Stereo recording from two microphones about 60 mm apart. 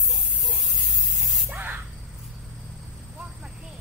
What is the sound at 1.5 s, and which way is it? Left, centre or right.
Spray, right.